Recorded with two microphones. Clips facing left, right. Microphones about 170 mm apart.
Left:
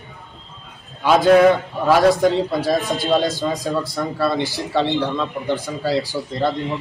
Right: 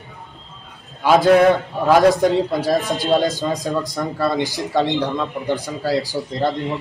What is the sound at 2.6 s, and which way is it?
Speech, 40° right (ahead or behind).